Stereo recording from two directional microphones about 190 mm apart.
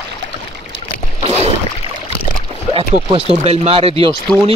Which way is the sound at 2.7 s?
30° right (ahead or behind).